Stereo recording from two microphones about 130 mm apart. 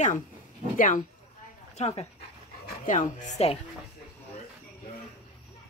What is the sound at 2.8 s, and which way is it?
Speech, 80° left.